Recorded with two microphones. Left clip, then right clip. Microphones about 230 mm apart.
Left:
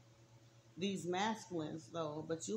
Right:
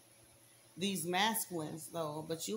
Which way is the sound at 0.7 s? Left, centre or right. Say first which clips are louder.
Right 5 dB; right.